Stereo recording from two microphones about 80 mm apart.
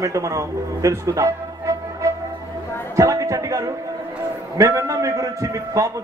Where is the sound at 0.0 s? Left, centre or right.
Right.